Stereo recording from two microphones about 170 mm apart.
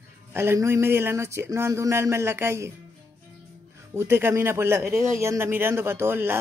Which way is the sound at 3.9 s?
15° right (ahead or behind).